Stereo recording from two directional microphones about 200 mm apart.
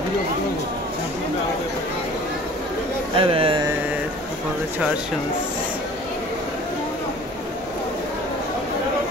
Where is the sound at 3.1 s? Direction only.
25° right (ahead or behind).